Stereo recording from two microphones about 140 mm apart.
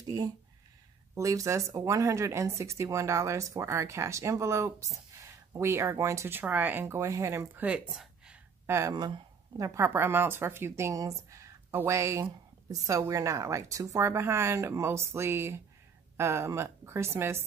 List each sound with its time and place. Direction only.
0.0 s speech: 30° right (ahead or behind); by 8.4 s 5° right (ahead or behind)
8.6 s speech: 20° right (ahead or behind)
8.9 s speech: 30° right (ahead or behind)